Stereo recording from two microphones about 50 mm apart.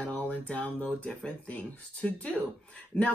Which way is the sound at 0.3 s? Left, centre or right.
Left.